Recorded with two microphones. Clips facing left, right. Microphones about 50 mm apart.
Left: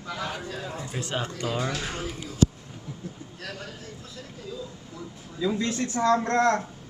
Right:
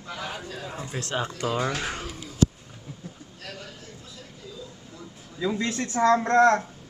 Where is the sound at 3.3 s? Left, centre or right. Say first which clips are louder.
Left 2 dB; left.